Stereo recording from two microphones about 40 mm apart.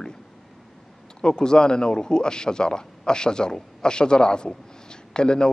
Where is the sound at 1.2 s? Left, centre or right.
Left.